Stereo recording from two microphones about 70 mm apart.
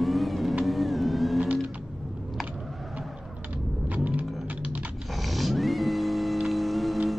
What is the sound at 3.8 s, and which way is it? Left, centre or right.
Rumble, right.